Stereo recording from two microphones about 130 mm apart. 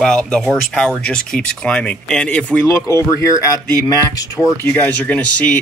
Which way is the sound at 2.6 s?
20° left (ahead or behind).